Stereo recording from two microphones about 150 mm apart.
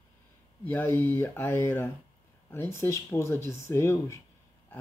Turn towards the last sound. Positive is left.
turn(degrees=20)  # may be behind; listen again after turning